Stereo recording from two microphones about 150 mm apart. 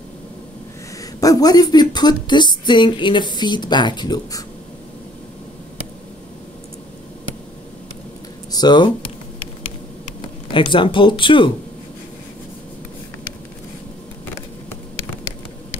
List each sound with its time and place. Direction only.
1.2 s a woman's voice: 25° left (ahead or behind)
8.5 s a sound: 30° left (ahead or behind)
10.5 s speech: 35° left (ahead or behind)